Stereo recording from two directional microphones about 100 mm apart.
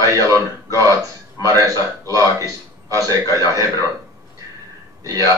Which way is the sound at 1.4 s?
35° right (ahead or behind).